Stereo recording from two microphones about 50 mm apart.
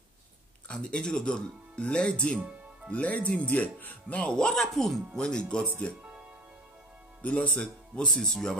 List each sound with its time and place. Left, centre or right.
0.7 s speech: centre
2.9 s speech: left
7.2 s speech: left
8.1 s speech: centre